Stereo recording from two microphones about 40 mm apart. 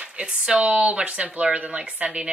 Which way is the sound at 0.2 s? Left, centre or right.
Right.